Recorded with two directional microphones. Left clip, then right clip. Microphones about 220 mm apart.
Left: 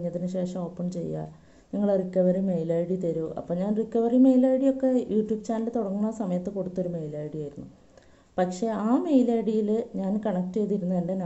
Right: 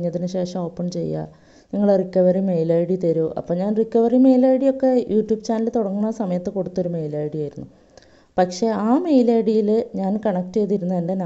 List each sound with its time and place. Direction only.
0.3 s a woman's voice: 35° right (ahead or behind)